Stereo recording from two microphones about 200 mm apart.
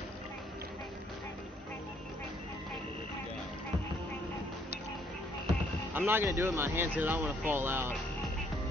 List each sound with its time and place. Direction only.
5.9 s speech: 10° right (ahead or behind)